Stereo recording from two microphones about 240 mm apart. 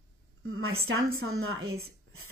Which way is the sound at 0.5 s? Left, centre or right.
Right.